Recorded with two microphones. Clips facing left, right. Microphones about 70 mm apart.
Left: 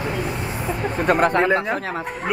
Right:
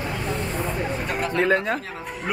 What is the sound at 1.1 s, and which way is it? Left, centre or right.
Speech, left.